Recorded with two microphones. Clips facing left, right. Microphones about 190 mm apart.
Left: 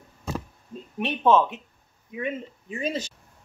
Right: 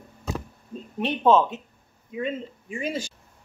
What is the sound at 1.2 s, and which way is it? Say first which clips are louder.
Speech: right 1 dB; 15° right (ahead or behind).